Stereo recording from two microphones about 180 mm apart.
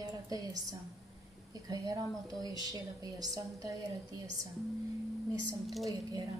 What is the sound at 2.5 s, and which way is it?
A woman's voice, 20° right (ahead or behind).